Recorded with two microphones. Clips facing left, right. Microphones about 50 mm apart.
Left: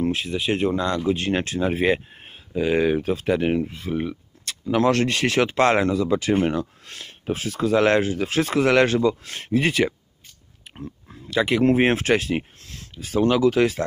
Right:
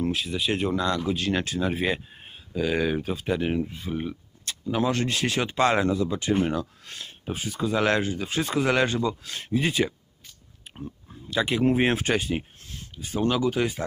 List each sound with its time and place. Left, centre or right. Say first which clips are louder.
0.0 s speech: left 3 dB; left
0.5 s speech: left 3 dB; left
1.4 s speech: left 4 dB; left
5.9 s speech: left 5 dB; left
6.4 s speech: left 3 dB; left
7.8 s speech: left 4 dB; left
8.1 s speech: left 5 dB; left
11.4 s speech: left 4 dB; centre
11.7 s speech: left 4 dB; left
12.0 s speech: left 5 dB; left
13.4 s speech: left 6 dB; left